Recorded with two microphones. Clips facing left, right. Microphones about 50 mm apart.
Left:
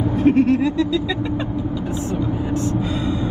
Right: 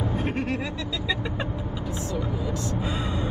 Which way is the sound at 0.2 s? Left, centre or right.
Right.